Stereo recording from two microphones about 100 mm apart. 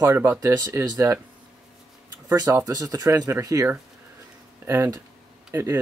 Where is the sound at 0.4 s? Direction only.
35° right (ahead or behind).